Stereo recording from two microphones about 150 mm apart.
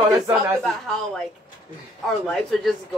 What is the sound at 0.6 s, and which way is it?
Speech, 5° left (ahead or behind).